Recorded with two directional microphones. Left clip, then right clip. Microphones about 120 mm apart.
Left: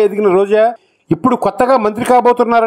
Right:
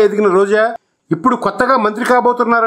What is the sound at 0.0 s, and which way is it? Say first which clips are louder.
A man's voice: even; 30° left (ahead or behind).